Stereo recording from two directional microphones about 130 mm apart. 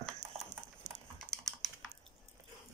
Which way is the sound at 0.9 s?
70° right (ahead or behind).